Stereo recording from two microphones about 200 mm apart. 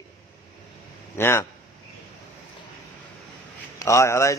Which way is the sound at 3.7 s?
15° left (ahead or behind).